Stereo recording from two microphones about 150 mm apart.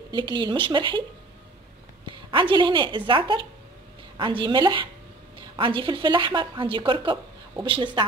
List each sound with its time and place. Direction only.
0.1 s speech: 30° right (ahead or behind)
2.0 s a woman's voice: 30° right (ahead or behind)